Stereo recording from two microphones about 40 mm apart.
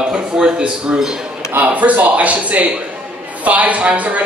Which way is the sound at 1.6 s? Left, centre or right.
Right.